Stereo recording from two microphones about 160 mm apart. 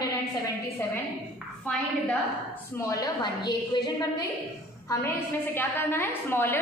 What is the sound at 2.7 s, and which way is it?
A woman's voice, 20° left (ahead or behind).